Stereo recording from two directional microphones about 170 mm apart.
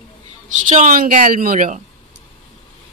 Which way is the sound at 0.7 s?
50° right (ahead or behind).